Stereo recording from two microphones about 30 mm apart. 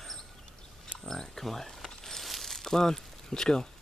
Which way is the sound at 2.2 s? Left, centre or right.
Centre.